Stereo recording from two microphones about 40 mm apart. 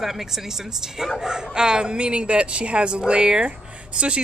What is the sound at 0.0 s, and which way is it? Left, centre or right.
Speech, centre.